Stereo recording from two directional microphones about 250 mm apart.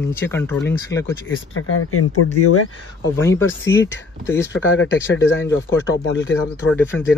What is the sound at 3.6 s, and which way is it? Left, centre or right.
Speech, left.